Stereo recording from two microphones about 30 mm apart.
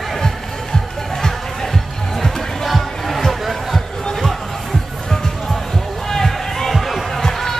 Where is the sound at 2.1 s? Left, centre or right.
Centre.